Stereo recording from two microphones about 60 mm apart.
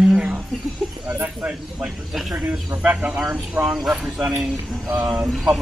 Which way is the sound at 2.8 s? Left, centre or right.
Right.